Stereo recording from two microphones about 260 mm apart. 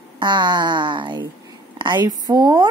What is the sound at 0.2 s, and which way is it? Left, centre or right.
A woman's voice, centre.